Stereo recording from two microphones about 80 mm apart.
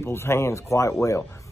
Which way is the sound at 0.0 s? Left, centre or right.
Left.